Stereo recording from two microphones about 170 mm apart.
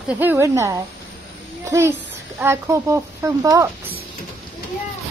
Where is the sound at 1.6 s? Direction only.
15° right (ahead or behind).